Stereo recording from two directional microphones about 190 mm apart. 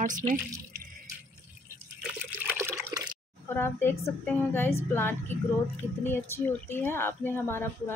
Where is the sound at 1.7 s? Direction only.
10° right (ahead or behind).